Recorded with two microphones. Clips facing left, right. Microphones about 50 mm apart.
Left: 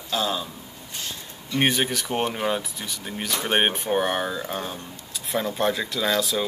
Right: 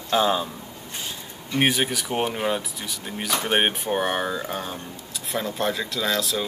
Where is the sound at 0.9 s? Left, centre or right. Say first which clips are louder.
Even; centre.